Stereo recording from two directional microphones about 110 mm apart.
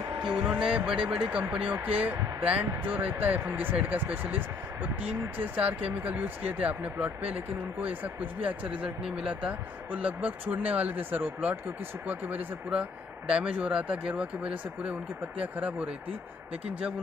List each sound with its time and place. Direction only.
0.5 s speech: 5° right (ahead or behind)